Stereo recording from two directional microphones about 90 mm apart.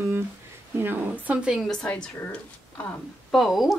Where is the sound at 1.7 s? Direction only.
10° left (ahead or behind).